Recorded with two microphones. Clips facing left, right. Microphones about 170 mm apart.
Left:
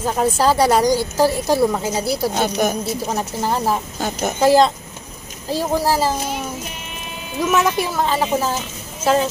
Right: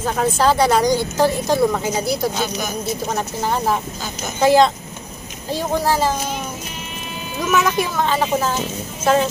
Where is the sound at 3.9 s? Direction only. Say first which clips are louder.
Left 6 dB; 60° left (ahead or behind).